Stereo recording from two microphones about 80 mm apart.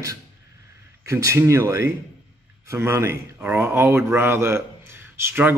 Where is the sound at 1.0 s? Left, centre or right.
Right.